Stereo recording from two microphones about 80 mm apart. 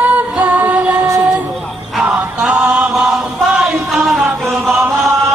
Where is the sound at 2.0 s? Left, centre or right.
Centre.